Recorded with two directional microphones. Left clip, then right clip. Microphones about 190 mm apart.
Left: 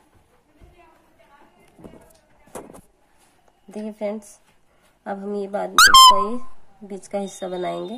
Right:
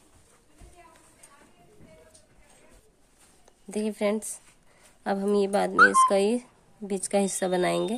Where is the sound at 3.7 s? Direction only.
55° right (ahead or behind).